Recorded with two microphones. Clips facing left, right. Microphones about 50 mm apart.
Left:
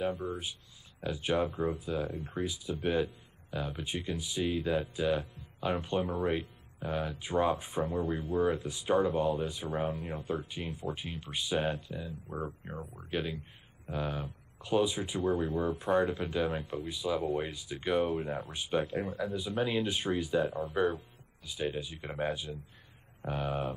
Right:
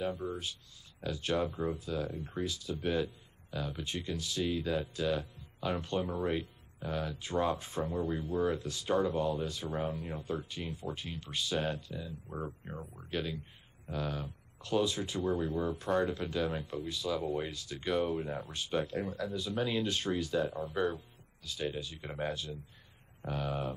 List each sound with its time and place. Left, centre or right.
0.0 s speech: centre